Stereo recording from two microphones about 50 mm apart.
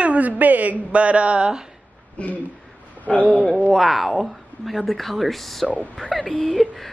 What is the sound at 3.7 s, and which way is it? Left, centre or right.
Speech, centre.